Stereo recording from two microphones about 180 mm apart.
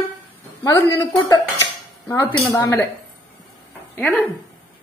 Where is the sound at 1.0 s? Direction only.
20° left (ahead or behind).